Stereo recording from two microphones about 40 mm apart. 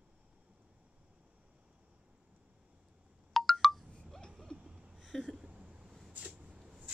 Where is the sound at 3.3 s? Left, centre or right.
Centre.